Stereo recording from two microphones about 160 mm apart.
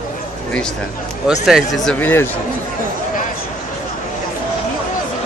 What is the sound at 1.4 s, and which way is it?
Speech, centre (ahead or behind).